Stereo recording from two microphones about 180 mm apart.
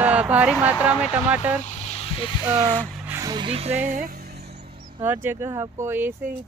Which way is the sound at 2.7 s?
5° left (ahead or behind).